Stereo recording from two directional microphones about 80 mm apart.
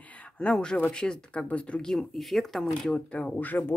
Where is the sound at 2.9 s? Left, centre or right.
Centre.